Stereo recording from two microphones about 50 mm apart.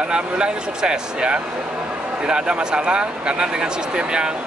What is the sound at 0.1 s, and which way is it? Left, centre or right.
Speech, centre.